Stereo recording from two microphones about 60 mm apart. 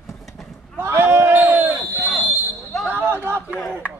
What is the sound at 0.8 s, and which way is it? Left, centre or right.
A man's voice, right.